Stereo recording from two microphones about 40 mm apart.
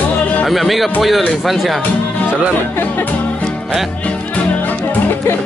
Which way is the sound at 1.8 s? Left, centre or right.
Left.